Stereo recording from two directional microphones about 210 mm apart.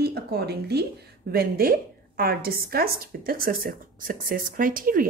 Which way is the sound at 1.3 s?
45° right (ahead or behind).